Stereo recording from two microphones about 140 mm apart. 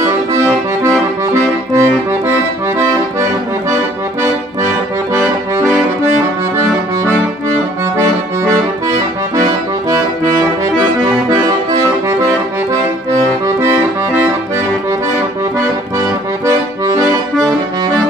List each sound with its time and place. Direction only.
0.0 s accordion: 20° right (ahead or behind)
8.4 s accordion: 25° right (ahead or behind)
13.6 s accordion: 15° right (ahead or behind)
16.4 s accordion: 25° right (ahead or behind)